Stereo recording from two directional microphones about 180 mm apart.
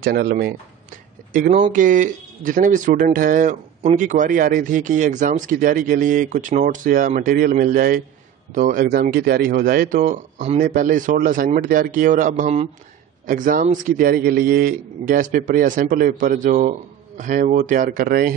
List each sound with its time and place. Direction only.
0.0 s speech: 60° right (ahead or behind)
1.5 s speech: 40° right (ahead or behind)